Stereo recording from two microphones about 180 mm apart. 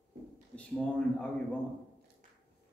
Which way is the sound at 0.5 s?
5° left (ahead or behind).